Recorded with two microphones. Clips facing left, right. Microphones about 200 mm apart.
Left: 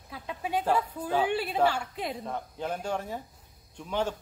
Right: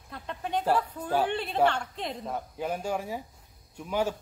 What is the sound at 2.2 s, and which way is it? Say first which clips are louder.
A man's voice: right 1 dB; 10° right (ahead or behind).